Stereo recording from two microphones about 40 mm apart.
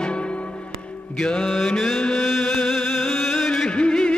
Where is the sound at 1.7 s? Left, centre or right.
Centre.